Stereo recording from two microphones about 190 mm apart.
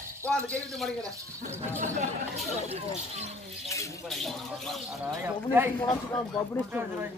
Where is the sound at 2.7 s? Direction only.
35° right (ahead or behind).